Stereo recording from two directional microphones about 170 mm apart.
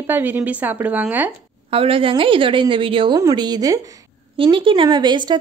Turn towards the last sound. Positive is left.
turn(degrees=-25)  # may be behind; listen again after turning